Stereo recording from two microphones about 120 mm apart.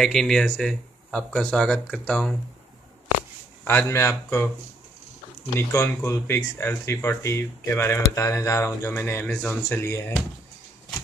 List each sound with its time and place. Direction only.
0.0 s speech: 5° left (ahead or behind)
3.6 s speech: 20° left (ahead or behind)
5.6 s speech: 20° left (ahead or behind)